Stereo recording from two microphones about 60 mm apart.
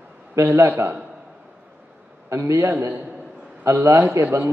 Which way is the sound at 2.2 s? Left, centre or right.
Right.